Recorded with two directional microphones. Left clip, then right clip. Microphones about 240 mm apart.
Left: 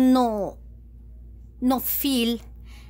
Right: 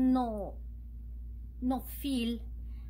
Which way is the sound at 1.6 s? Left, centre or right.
Left.